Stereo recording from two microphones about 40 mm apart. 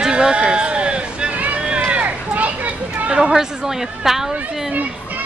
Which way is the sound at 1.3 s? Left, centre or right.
Right.